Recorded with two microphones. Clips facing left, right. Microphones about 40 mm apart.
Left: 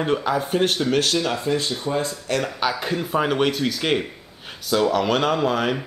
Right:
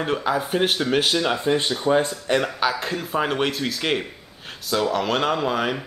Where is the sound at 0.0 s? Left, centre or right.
Centre; by 2.4 s right.